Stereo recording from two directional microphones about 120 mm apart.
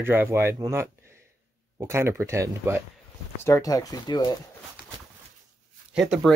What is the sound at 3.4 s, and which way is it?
Speech, 30° left (ahead or behind).